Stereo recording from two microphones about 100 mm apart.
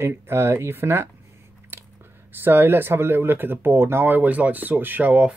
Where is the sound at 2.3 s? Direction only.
20° right (ahead or behind).